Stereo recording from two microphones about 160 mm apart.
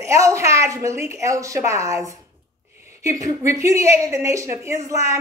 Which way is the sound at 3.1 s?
20° right (ahead or behind).